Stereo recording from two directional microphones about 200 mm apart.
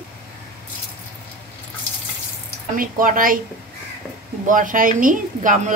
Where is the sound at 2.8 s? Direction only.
45° right (ahead or behind).